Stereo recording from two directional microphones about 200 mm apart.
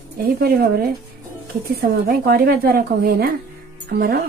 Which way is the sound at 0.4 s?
50° right (ahead or behind).